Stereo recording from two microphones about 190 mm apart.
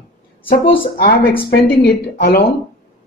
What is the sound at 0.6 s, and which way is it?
Speech, 25° left (ahead or behind).